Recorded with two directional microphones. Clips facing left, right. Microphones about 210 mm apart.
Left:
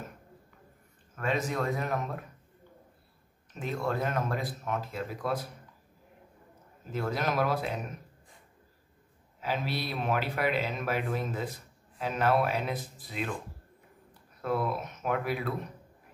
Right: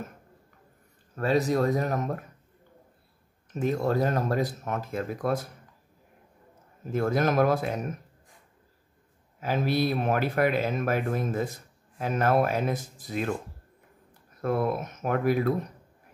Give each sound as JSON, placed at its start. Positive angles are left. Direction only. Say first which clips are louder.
{"t": 1.1, "sound": "speech", "louder": "right 7 dB", "side_deg": -35}
{"t": 3.5, "sound": "speech", "louder": "right 6 dB", "side_deg": -45}
{"t": 6.9, "sound": "speech", "louder": "right 6 dB", "side_deg": -50}
{"t": 9.4, "sound": "speech", "louder": "right 7 dB", "side_deg": -45}
{"t": 14.4, "sound": "speech", "louder": "right 4 dB", "side_deg": -50}